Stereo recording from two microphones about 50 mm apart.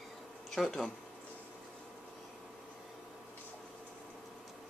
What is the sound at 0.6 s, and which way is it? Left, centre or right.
Speech, centre.